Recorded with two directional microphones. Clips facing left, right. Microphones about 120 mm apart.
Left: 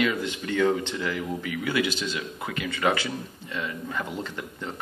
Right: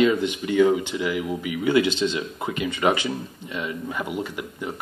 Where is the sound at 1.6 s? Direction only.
20° right (ahead or behind).